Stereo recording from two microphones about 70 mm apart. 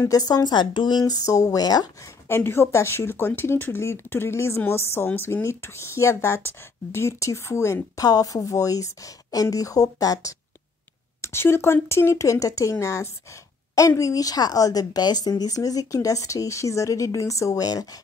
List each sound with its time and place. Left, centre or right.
0.0 s speech: left
2.2 s speech: left
8.0 s speech: left
11.1 s speech: left
13.7 s speech: left